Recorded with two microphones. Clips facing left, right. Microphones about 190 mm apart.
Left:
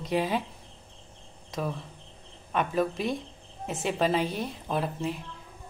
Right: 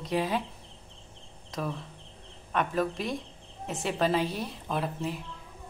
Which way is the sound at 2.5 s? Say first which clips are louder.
Left 1 dB; centre (ahead or behind).